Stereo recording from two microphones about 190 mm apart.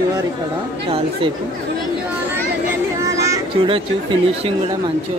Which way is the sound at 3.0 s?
15° right (ahead or behind).